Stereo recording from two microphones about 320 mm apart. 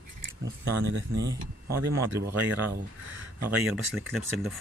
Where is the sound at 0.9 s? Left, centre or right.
Right.